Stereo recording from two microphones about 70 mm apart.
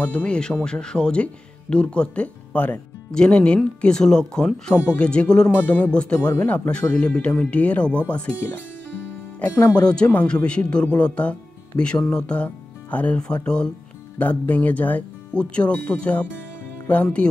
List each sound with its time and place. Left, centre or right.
0.0 s speech: centre
3.1 s speech: centre
9.4 s speech: centre